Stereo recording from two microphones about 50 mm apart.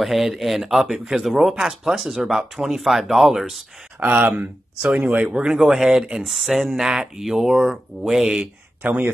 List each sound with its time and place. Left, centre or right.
0.0 s speech: centre
4.0 s speech: right
5.2 s speech: right
5.6 s speech: centre
8.8 s speech: right